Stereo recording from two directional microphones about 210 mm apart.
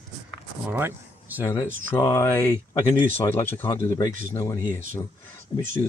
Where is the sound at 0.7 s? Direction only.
10° right (ahead or behind).